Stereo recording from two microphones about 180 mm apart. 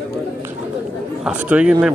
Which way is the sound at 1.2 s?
5° right (ahead or behind).